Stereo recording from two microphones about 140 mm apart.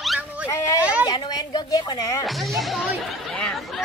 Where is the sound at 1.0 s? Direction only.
30° left (ahead or behind).